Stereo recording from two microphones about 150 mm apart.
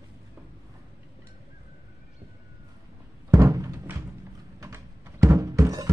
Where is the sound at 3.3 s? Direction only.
20° right (ahead or behind).